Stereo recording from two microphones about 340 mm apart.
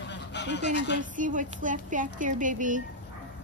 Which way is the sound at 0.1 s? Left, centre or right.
Left.